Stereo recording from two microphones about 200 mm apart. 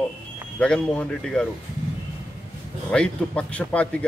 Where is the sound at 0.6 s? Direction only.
5° left (ahead or behind).